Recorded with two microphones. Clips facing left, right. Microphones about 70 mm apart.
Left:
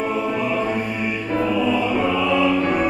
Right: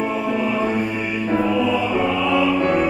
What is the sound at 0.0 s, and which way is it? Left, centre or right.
Music, centre.